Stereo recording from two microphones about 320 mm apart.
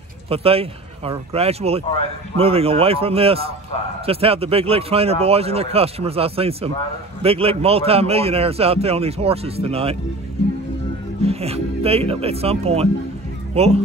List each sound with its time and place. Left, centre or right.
0.3 s a man's voice: centre
11.2 s a man's voice: centre